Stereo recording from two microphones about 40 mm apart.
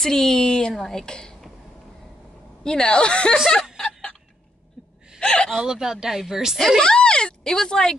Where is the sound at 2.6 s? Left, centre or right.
Left.